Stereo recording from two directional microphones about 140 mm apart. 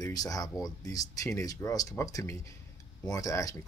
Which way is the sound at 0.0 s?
25° left (ahead or behind).